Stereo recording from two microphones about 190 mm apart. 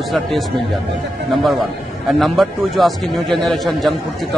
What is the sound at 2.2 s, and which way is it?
Speech, centre (ahead or behind).